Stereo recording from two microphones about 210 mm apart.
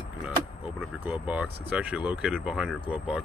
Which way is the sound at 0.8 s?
5° right (ahead or behind).